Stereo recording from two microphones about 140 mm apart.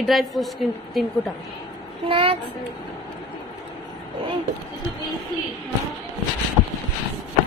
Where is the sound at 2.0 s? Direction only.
40° right (ahead or behind).